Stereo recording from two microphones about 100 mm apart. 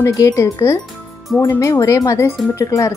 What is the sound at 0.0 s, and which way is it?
Speech, 30° left (ahead or behind).